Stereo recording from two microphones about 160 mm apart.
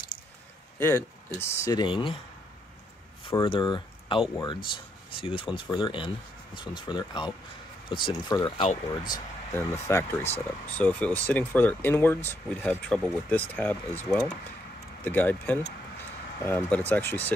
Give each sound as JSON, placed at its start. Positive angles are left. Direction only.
{"t": 0.7, "sound": "speech", "side_deg": 15}
{"t": 3.3, "sound": "speech", "side_deg": 30}
{"t": 9.1, "sound": "speech", "side_deg": 15}